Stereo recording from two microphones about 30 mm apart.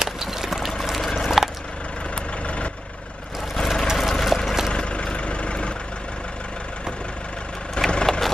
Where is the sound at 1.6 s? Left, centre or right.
Left.